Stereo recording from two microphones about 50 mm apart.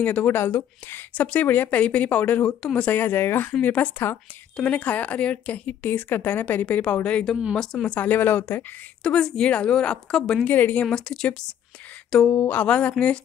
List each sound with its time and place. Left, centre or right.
0.0 s a woman's voice: left
0.4 s speech: left
1.1 s a woman's voice: left
3.0 s speech: left
3.6 s a woman's voice: left
7.5 s a woman's voice: centre
7.8 s a woman's voice: left
9.0 s a woman's voice: centre
10.4 s a woman's voice: left
12.3 s a woman's voice: left